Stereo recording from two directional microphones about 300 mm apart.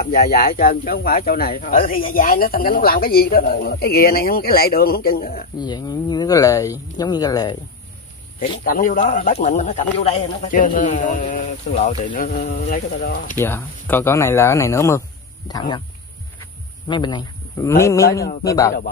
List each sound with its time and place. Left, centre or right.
0.0 s speech: left
5.6 s speech: centre
8.6 s speech: left
13.4 s speech: centre
16.3 s a sound: centre
18.4 s speech: centre